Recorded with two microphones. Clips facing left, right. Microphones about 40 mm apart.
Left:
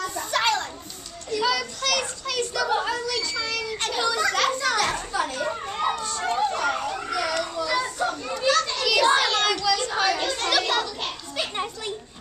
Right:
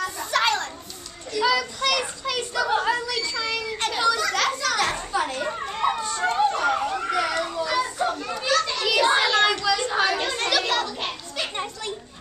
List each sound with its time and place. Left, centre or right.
0.0 s children playing: centre
1.4 s a sound: centre
3.7 s children playing: centre
4.1 s children playing: centre
4.7 s children playing: centre
5.5 s children playing: centre
5.9 s emergency vehicle: centre
7.1 s a sound: right
7.8 s children playing: centre
8.6 s a sound: centre
9.3 s chatter: centre
11.3 s music: centre